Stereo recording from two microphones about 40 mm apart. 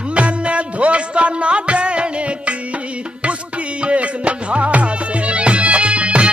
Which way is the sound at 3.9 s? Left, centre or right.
Right.